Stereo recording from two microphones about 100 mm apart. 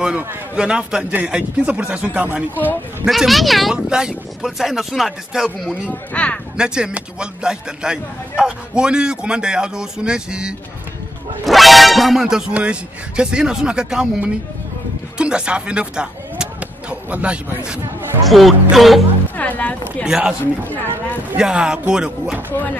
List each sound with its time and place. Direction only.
0.6 s a man's voice: 10° right (ahead or behind)
3.1 s speech: centre (ahead or behind)
5.7 s speech: 10° left (ahead or behind)
6.5 s a man's voice: 10° right (ahead or behind)
18.2 s speech: centre (ahead or behind)
19.3 s speech: 15° left (ahead or behind)
20.1 s a man's voice: 5° right (ahead or behind)
21.4 s a man's voice: 5° right (ahead or behind)